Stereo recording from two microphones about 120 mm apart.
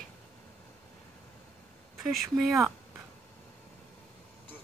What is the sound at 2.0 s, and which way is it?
Speech, centre (ahead or behind).